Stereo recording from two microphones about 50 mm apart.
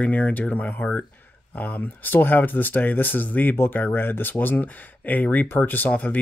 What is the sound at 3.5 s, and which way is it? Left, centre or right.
Speech, left.